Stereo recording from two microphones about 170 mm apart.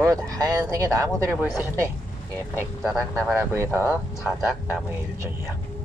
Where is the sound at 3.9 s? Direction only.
Centre (ahead or behind).